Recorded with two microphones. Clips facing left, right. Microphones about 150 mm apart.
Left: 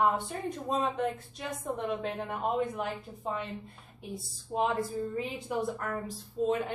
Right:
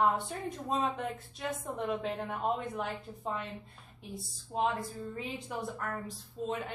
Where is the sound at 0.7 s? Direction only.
Centre (ahead or behind).